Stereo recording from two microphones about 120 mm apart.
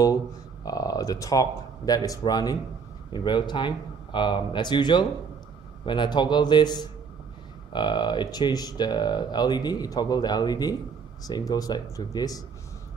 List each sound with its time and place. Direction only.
0.7 s speech: 30° left (ahead or behind)